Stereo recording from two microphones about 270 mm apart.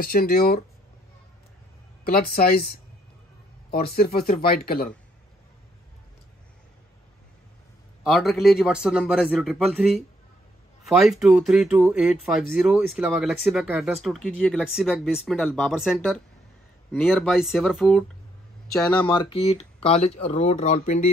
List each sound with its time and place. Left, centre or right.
0.0 s speech: left
2.0 s speech: left
8.0 s speech: centre
18.9 s speech: centre